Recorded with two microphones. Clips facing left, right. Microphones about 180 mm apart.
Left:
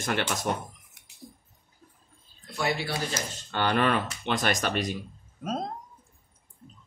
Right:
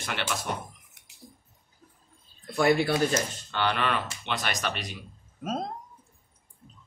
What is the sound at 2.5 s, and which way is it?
Speech, 55° right (ahead or behind).